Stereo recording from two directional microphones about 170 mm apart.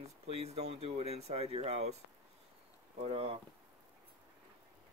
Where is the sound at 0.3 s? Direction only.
40° right (ahead or behind).